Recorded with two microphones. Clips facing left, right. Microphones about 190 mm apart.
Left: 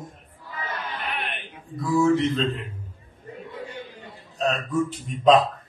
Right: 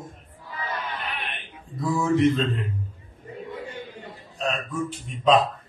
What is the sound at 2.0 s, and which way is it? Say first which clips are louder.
Speech: right 2 dB; 10° right (ahead or behind).